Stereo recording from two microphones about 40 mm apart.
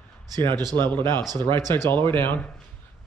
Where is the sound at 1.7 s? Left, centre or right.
Left.